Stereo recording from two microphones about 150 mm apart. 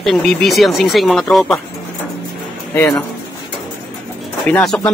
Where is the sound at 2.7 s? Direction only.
15° left (ahead or behind).